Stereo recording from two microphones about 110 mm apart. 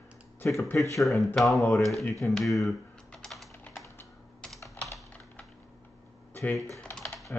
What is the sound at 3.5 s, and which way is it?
Typing, 20° left (ahead or behind).